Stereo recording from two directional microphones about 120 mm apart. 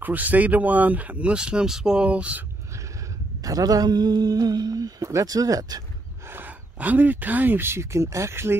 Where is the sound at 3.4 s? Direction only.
30° right (ahead or behind).